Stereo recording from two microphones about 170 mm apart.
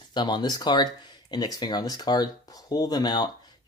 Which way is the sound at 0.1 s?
25° left (ahead or behind).